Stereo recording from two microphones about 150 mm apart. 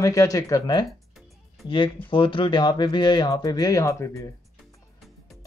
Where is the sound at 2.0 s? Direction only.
35° left (ahead or behind).